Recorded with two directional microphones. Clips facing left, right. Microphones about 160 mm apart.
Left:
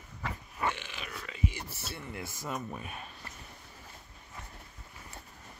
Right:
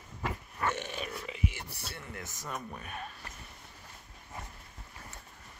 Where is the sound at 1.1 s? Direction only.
25° right (ahead or behind).